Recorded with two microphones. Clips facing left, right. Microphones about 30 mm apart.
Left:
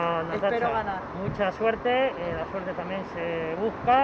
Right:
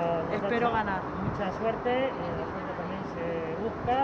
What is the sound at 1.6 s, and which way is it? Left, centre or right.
Speech, left.